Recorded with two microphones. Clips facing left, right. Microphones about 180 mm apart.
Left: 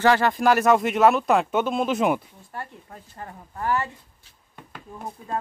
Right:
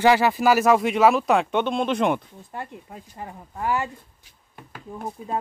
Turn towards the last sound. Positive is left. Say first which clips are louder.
# right 3 dB
turn(degrees=-5)  # may be behind; listen again after turning